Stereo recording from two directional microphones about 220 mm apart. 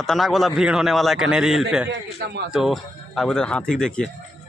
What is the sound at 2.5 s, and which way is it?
Speech, centre (ahead or behind).